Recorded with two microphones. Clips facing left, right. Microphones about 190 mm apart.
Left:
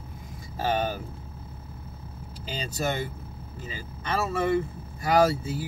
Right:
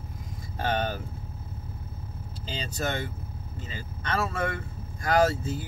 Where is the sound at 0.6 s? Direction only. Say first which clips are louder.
Left 2 dB; 5° left (ahead or behind).